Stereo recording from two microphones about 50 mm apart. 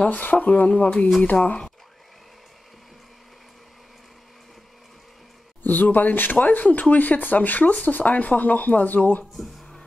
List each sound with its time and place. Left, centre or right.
0.1 s speech: left
5.6 s speech: left